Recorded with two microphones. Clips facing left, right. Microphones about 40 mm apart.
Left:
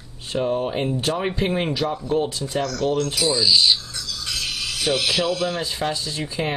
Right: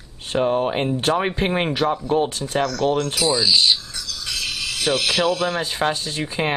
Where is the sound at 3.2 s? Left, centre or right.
Centre.